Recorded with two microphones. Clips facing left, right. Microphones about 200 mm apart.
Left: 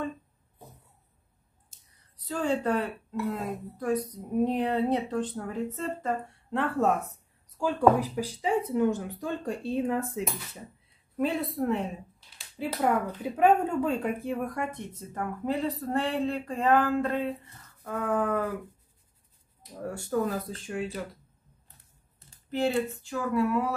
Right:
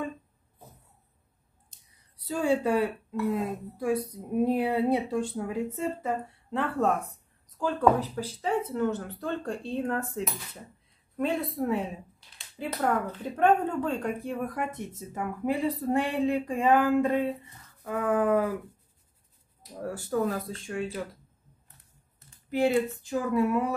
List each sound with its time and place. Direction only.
2.2 s a woman's voice: 10° right (ahead or behind)
19.6 s a woman's voice: centre (ahead or behind)
22.5 s speech: 10° right (ahead or behind)
23.0 s a sound: 20° right (ahead or behind)